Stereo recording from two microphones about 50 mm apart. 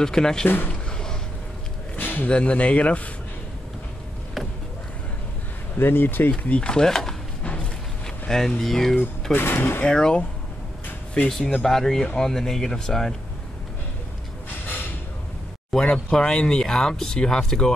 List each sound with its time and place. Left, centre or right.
0.0 s speech: centre
2.0 s a sound: left
2.2 s speech: left
5.8 s speech: left
6.3 s a sound: centre
8.3 s speech: centre
9.3 s speech: left
9.8 s speech: centre
11.2 s speech: centre
15.8 s speech: centre